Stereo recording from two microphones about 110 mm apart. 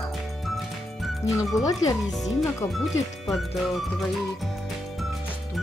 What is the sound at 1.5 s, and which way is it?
Speech, 30° left (ahead or behind).